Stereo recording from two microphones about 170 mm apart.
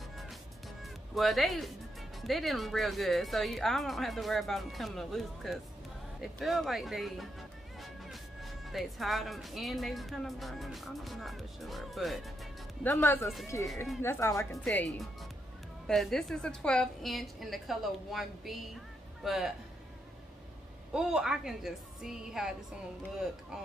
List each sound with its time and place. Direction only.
1.1 s speech: centre (ahead or behind)
12.8 s speech: 15° left (ahead or behind)
14.6 s speech: 5° left (ahead or behind)
20.9 s speech: 5° right (ahead or behind)